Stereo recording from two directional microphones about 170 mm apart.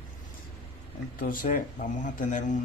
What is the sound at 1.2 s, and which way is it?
Speech, 55° left (ahead or behind).